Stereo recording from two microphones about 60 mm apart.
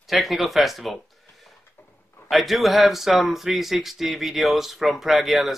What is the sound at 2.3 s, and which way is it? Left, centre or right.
Speech, centre.